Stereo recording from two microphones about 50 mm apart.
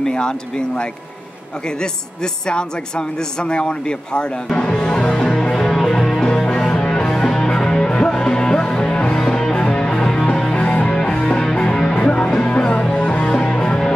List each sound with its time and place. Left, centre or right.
0.0 s speech: centre
3.4 s speech: left
4.6 s music: centre
13.3 s music: centre